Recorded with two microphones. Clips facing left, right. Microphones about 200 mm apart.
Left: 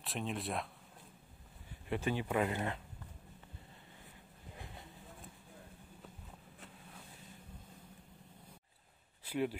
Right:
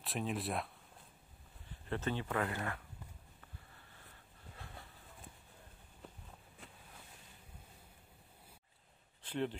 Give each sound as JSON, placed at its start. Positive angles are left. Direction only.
{"t": 0.0, "sound": "speech", "side_deg": 0}
{"t": 1.9, "sound": "speech", "side_deg": 10}
{"t": 9.2, "sound": "speech", "side_deg": 10}